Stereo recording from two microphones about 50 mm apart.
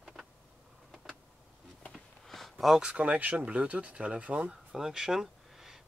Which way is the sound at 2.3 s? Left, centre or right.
Centre.